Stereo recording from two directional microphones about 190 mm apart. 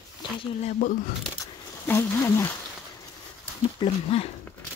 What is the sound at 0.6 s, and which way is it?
Speech, 45° left (ahead or behind).